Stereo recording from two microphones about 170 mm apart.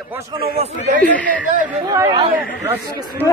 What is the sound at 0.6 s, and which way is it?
Speech, 45° right (ahead or behind).